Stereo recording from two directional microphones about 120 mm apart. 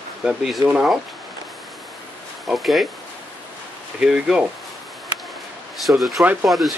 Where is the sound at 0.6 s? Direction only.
5° right (ahead or behind).